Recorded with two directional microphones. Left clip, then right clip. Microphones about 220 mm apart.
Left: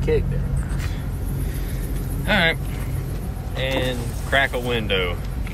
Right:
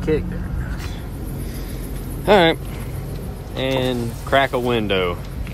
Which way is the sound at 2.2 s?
25° right (ahead or behind).